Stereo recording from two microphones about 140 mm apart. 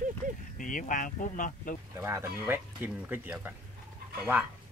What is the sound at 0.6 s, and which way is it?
Speech, 70° left (ahead or behind).